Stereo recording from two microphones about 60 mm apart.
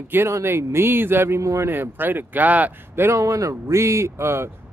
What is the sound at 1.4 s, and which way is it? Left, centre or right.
Speech, right.